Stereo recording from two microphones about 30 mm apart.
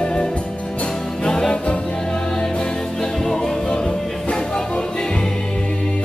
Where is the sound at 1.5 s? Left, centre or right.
Left.